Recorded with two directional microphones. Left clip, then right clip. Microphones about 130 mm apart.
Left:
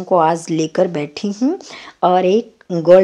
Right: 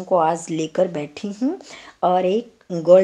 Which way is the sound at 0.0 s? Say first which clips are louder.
Left 4 dB; 45° left (ahead or behind).